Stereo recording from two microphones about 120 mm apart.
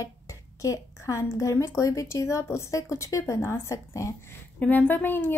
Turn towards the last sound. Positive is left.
turn(degrees=15)  # may be behind; listen again after turning